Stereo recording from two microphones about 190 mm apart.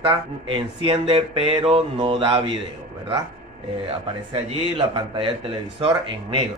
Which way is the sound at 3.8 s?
30° right (ahead or behind).